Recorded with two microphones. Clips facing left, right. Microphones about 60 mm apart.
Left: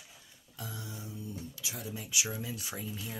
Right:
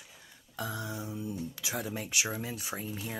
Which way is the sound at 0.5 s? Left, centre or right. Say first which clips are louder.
Right 7 dB; right.